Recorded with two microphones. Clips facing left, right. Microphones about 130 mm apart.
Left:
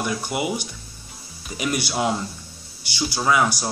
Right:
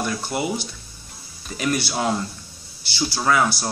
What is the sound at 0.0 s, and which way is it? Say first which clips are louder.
Speech: even; 15° left (ahead or behind).